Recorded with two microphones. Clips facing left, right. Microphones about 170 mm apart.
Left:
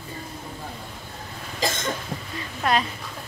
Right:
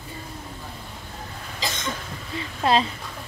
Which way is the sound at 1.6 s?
50° left (ahead or behind).